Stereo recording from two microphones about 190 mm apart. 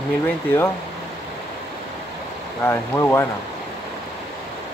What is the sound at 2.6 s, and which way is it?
Speech, 15° left (ahead or behind).